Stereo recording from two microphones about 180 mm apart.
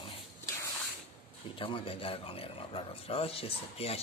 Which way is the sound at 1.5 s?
30° left (ahead or behind).